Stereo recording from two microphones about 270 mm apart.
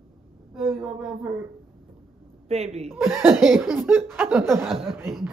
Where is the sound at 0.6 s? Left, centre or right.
Centre.